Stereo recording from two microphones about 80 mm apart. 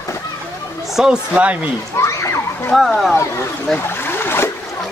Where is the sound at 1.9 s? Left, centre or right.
Left.